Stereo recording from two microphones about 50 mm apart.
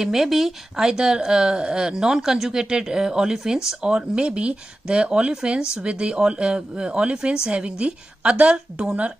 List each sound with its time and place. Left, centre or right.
0.0 s a woman's voice: centre